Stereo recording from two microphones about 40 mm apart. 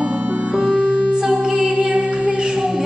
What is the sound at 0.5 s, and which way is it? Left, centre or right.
Music, centre.